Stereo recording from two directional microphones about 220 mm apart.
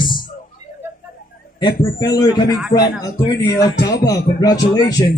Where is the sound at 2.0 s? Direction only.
15° left (ahead or behind).